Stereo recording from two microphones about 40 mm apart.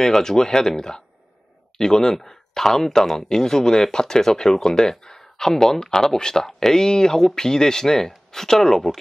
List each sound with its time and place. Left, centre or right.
0.0 s speech: centre